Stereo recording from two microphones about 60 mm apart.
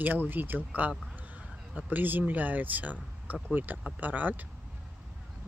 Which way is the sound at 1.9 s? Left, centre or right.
Right.